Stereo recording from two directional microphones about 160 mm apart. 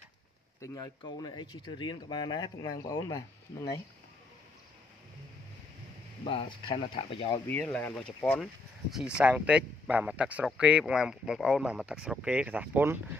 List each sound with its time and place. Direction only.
0.6 s speech: 25° left (ahead or behind)
6.2 s speech: 35° left (ahead or behind)
7.4 s speech: 10° left (ahead or behind)
9.2 s speech: 10° right (ahead or behind)